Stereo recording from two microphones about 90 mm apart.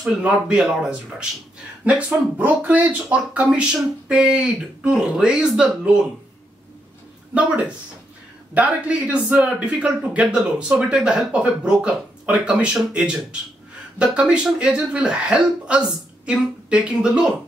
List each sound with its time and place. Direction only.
0.2 s speech: 10° right (ahead or behind)
7.3 s speech: 15° right (ahead or behind)